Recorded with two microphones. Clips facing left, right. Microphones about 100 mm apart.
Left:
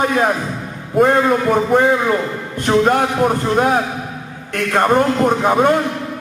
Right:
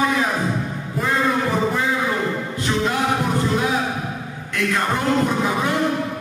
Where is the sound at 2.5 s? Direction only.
50° left (ahead or behind).